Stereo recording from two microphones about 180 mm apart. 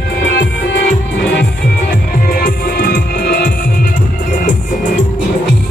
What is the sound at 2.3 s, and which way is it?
Music, 50° left (ahead or behind).